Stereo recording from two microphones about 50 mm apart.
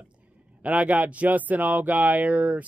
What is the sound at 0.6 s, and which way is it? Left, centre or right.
Speech, right.